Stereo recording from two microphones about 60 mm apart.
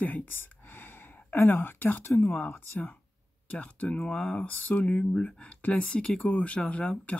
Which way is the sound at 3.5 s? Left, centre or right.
Left.